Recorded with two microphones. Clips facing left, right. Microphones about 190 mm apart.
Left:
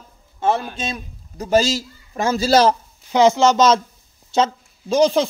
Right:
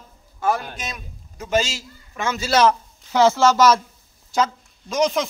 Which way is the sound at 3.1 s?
15° left (ahead or behind).